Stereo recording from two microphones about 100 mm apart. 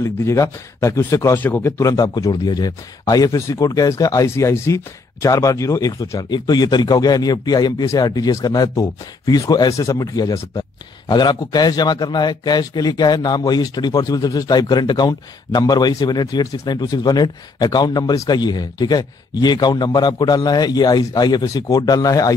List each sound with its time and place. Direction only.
0.0 s speech: 30° left (ahead or behind)
1.4 s speech: 20° left (ahead or behind)
1.8 s a man's voice: 40° left (ahead or behind)